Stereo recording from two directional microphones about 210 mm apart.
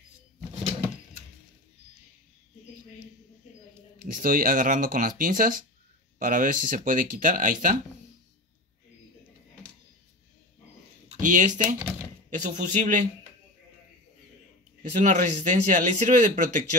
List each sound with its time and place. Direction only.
4.0 s speech: 40° right (ahead or behind)
11.1 s speech: 35° right (ahead or behind)
14.8 s speech: 35° right (ahead or behind)